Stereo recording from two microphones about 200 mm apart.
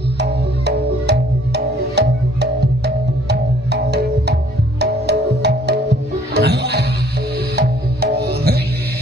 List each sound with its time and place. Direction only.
0.2 s music: 55° right (ahead or behind)